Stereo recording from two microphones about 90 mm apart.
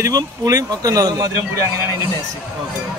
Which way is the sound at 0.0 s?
40° right (ahead or behind).